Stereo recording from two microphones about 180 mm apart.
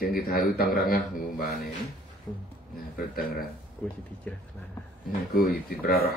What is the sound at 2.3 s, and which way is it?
Speech, 25° left (ahead or behind).